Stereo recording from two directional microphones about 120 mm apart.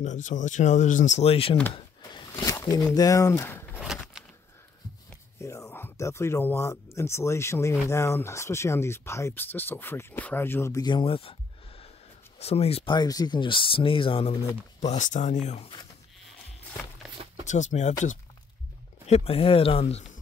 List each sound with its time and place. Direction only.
0.0 s speech: 90° left; by 1.6 s 50° left (ahead or behind)
2.4 s speech: 25° left (ahead or behind)
3.8 s a sound: 5° right (ahead or behind)
5.4 s speech: 25° left (ahead or behind)
10.8 s a sound: 40° left (ahead or behind)
12.4 s speech: 60° left (ahead or behind)
12.9 s speech: 35° left (ahead or behind)
14.9 s speech: 90° left; by 15.7 s 70° left (ahead or behind)
17.5 s speech: 80° left
19.0 s speech: 60° left (ahead or behind)